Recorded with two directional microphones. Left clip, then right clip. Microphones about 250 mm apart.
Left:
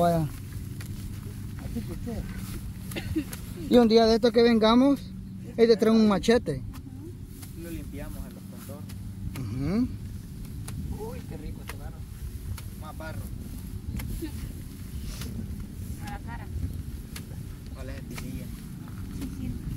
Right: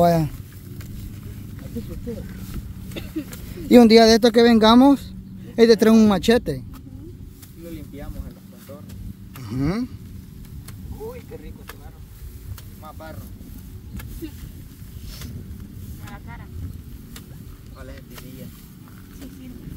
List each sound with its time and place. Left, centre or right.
0.0 s speech: right
2.9 s speech: centre
3.6 s speech: right; by 6.6 s centre
9.4 s vehicle: right